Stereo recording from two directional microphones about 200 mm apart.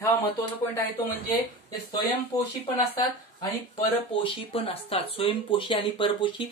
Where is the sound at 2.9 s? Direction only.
15° left (ahead or behind).